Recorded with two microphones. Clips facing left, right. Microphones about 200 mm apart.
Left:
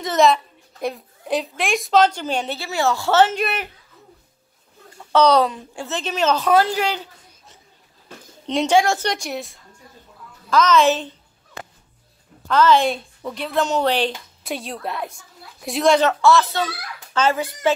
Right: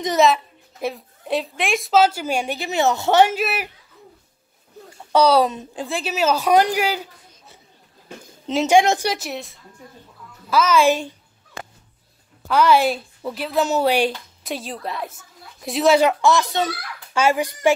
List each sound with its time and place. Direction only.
0.2 s a woman's voice: centre (ahead or behind)
5.1 s a woman's voice: 10° right (ahead or behind)
5.5 s a woman's voice: 20° right (ahead or behind)
5.9 s a woman's voice: 10° right (ahead or behind)
8.5 s a woman's voice: 5° right (ahead or behind)
8.7 s a woman's voice: 15° right (ahead or behind)
9.1 s a woman's voice: centre (ahead or behind)
10.5 s a sound: 10° right (ahead or behind)
12.4 s a woman's voice: 10° right (ahead or behind)